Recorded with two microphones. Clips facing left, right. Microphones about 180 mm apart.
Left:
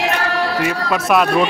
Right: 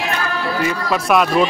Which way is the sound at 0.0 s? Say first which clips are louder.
Left 3 dB; 75° left (ahead or behind).